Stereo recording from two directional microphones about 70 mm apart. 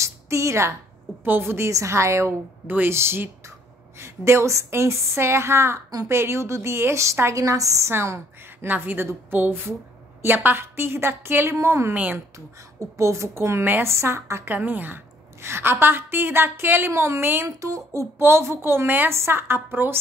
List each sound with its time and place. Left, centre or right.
0.0 s a sound: right
1.2 s a woman's voice: right
1.7 s a woman's voice: right
2.6 s a woman's voice: right
8.6 s a woman's voice: right
11.9 s a woman's voice: right
12.9 s a woman's voice: right
14.5 s a woman's voice: right
17.6 s a woman's voice: right